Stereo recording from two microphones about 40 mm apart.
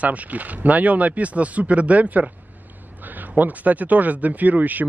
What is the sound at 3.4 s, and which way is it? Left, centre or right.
Speech, right.